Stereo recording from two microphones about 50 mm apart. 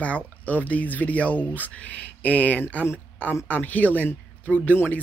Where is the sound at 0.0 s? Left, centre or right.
Left.